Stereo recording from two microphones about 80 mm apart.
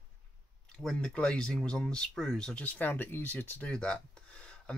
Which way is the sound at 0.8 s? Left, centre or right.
Centre.